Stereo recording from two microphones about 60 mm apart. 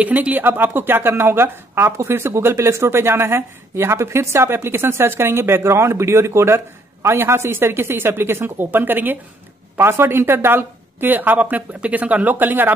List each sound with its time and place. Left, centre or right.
0.0 s speech: right
9.8 s speech: right